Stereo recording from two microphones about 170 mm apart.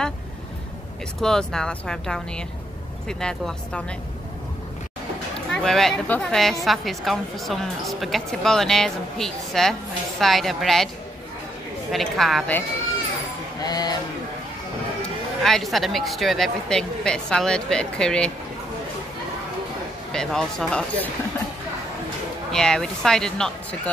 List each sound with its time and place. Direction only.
1.2 s speech: 5° left (ahead or behind)
5.5 s speech: 5° left (ahead or behind)
11.9 s speech: centre (ahead or behind)
13.6 s cowbell: 25° left (ahead or behind)
15.4 s speech: centre (ahead or behind)
20.1 s speech: 5° left (ahead or behind)
22.5 s speech: 5° left (ahead or behind)